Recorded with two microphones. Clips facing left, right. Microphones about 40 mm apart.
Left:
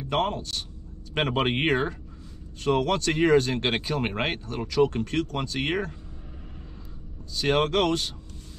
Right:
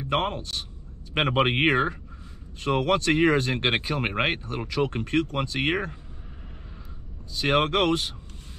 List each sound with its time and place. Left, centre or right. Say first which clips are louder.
0.0 s a man's voice: even; right
7.3 s speech: right 1 dB; centre